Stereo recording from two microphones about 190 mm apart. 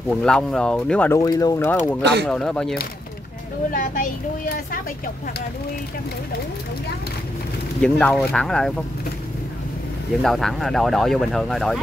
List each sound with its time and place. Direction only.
0.1 s speech: 5° left (ahead or behind)
2.2 s speech: 5° left (ahead or behind)
3.7 s a child's voice: 45° left (ahead or behind)
7.8 s speech: 5° left (ahead or behind)
10.2 s speech: centre (ahead or behind)